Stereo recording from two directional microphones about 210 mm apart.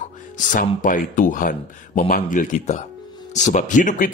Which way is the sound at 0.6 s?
40° left (ahead or behind).